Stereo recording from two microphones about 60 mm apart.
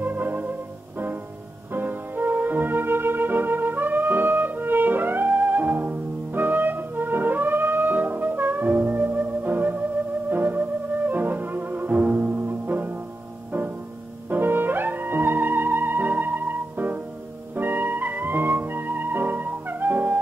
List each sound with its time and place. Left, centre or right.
0.0 s music: right
1.7 s music: right
14.3 s music: right